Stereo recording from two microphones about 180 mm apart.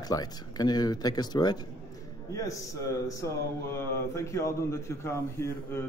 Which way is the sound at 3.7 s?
15° left (ahead or behind).